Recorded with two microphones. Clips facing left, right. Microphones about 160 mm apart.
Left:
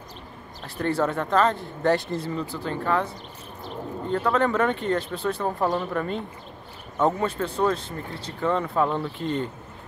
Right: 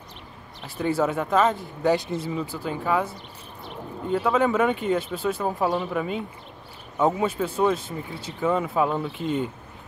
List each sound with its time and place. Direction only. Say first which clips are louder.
0.7 s speech: right 1 dB; 5° right (ahead or behind)